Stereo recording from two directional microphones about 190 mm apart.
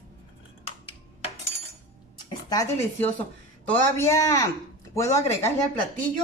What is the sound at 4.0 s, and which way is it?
Speech, 15° left (ahead or behind).